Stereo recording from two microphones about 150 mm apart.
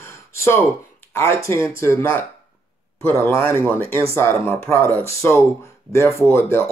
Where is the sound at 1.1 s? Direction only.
20° left (ahead or behind).